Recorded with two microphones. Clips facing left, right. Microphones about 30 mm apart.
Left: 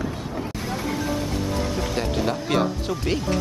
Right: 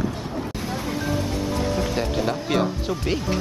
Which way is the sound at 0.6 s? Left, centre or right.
Centre.